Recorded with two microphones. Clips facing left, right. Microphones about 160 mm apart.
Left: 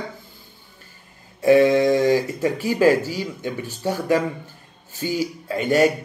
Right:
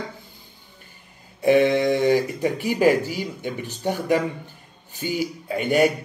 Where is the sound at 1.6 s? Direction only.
45° left (ahead or behind).